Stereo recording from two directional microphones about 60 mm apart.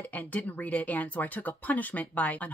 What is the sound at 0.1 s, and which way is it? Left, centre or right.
Speech, left.